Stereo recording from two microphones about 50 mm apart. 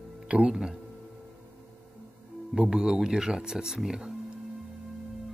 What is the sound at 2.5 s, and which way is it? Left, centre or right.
Speech, centre.